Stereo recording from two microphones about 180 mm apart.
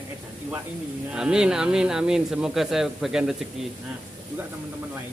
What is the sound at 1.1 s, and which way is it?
Speech, 5° right (ahead or behind).